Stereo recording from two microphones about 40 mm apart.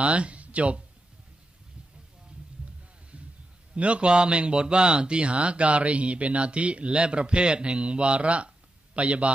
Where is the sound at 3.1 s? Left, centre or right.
Right.